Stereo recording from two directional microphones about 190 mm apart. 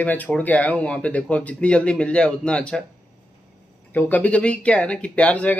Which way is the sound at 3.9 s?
10° left (ahead or behind).